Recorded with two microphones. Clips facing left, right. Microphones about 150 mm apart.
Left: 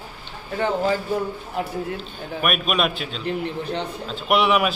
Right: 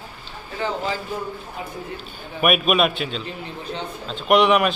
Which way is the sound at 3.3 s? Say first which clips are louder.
Left 6 dB; 70° left (ahead or behind).